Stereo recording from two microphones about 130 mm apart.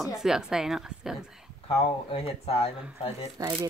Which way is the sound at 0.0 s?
5° right (ahead or behind).